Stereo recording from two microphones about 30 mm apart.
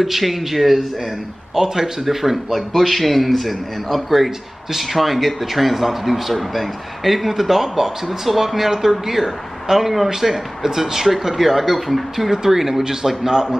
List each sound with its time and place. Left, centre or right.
0.0 s a man's voice: centre
1.5 s speech: centre
2.0 s speech: centre
2.7 s a man's voice: centre
7.0 s a man's voice: centre
12.3 s speech: centre